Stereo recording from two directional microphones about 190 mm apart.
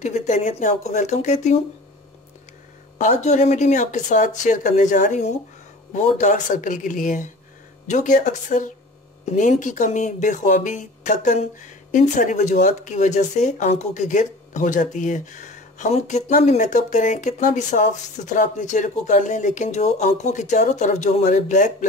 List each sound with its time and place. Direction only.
0.0 s speech: 40° left (ahead or behind)
3.0 s speech: 40° left (ahead or behind)